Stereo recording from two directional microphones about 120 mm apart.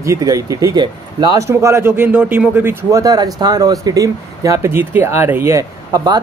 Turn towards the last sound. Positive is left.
turn(degrees=-35)  # may be behind; listen again after turning